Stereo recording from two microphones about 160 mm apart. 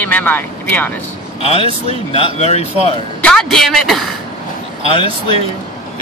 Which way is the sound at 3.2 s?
5° left (ahead or behind).